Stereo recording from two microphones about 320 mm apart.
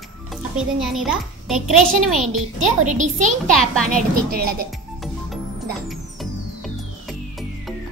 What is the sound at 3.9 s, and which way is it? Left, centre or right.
Speech, right.